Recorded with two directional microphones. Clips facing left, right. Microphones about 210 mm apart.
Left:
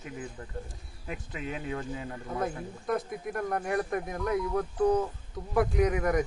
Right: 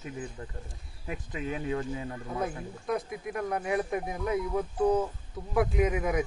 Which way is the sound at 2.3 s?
Centre (ahead or behind).